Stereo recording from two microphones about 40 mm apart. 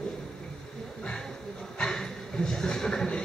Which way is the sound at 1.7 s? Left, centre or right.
Centre.